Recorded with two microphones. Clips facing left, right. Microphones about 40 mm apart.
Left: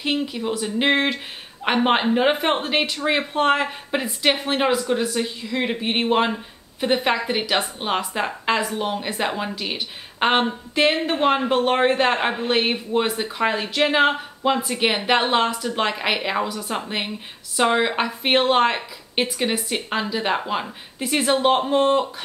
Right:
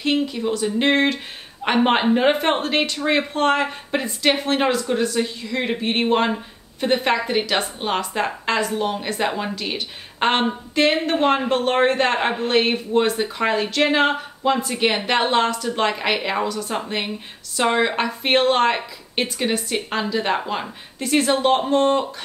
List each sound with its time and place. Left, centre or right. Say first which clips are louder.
0.0 s a woman's voice: right 3 dB; centre